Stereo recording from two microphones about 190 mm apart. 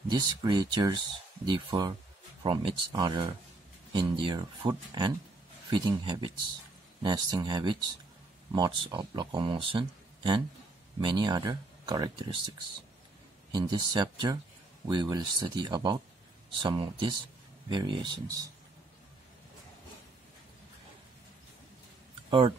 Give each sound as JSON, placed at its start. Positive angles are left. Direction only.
{"t": 0.1, "sound": "speech", "side_deg": -20}
{"t": 13.5, "sound": "speech", "side_deg": -20}